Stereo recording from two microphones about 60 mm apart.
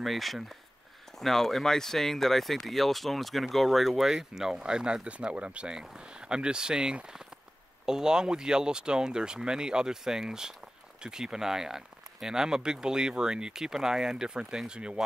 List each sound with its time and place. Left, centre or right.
0.0 s speech: centre